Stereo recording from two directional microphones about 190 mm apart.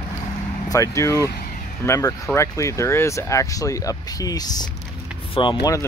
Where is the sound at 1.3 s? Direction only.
50° left (ahead or behind).